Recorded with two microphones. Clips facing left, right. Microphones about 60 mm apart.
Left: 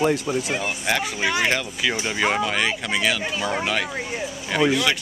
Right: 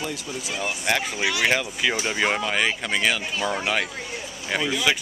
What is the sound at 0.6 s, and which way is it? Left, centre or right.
Speech, centre.